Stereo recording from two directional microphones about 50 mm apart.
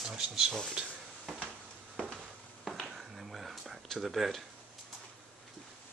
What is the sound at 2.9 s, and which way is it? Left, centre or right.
Whispering, centre.